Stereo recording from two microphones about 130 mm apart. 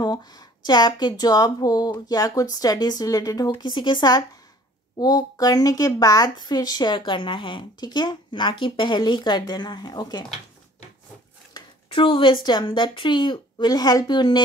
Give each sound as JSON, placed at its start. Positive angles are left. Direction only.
{"t": 0.0, "sound": "speech", "side_deg": 30}
{"t": 11.9, "sound": "a woman's voice", "side_deg": 45}